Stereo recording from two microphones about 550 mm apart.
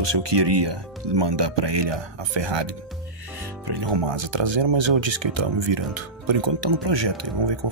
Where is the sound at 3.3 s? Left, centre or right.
Right.